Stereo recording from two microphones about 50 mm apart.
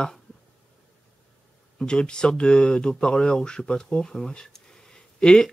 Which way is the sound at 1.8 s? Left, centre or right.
Centre.